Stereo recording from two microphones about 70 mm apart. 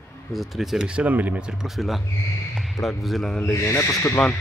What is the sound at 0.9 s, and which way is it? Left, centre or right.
Speech, right.